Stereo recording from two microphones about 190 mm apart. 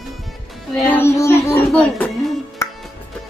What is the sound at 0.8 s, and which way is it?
Child singing, 10° left (ahead or behind).